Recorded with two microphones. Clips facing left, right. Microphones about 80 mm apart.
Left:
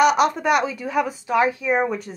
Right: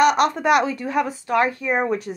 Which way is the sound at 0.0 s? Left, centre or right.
Centre.